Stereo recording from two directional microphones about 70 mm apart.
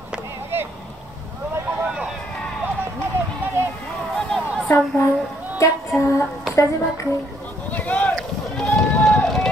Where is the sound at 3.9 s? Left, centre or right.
Centre.